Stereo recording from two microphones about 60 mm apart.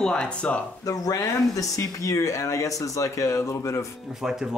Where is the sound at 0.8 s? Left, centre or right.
Left.